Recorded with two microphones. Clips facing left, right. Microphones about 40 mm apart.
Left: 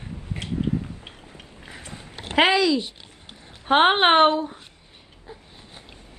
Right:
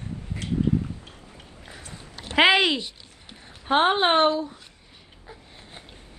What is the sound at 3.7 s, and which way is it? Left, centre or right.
Speech, left.